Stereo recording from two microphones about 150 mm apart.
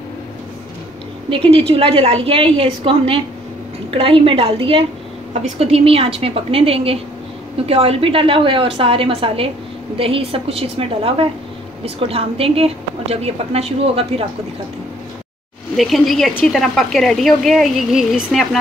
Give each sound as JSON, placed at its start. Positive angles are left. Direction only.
{"t": 1.3, "sound": "a woman's voice", "side_deg": -35}
{"t": 15.7, "sound": "speech", "side_deg": 0}